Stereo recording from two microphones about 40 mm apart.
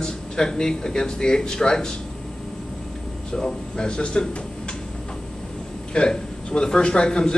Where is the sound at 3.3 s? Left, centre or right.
Centre.